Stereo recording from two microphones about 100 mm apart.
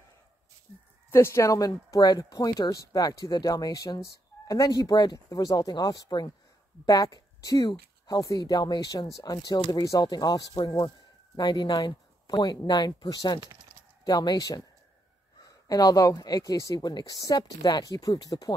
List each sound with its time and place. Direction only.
1.1 s speech: 25° left (ahead or behind)
15.7 s speech: 40° left (ahead or behind)